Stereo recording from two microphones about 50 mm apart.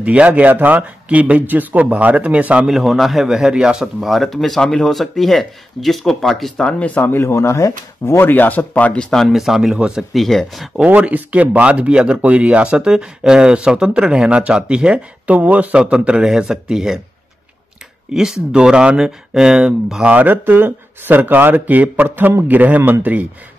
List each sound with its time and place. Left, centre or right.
0.0 s speech: right
2.6 s speech: centre
7.0 s speech: left
8.2 s speech: left
9.3 s speech: centre
10.1 s speech: centre
11.0 s speech: right
15.2 s speech: right
15.7 s speech: right
18.1 s speech: centre
20.0 s speech: right
20.2 s speech: right